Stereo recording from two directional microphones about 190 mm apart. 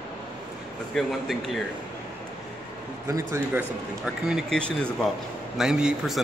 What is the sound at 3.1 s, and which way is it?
Speech, 15° right (ahead or behind).